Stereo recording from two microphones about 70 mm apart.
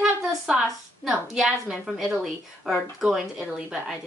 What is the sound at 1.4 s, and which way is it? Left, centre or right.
Speech, centre.